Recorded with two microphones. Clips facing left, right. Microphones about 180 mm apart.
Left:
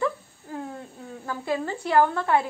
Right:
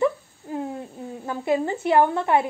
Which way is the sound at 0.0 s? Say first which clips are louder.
Right 5 dB; 20° right (ahead or behind).